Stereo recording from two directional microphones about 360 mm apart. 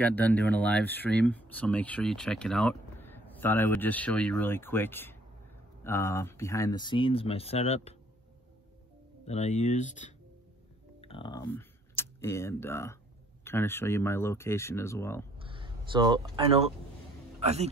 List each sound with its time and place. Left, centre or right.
0.0 s speech: centre
9.2 s speech: centre
15.3 s a sound: centre
17.4 s a man's voice: centre